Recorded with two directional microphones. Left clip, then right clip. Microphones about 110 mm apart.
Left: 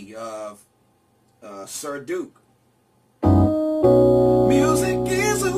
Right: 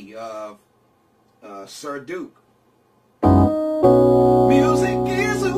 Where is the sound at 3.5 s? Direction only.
55° right (ahead or behind).